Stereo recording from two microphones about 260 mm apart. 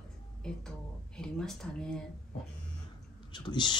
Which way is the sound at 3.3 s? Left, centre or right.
Centre.